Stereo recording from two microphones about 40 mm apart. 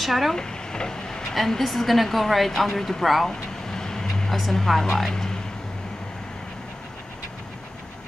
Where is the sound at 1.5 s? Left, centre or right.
Centre.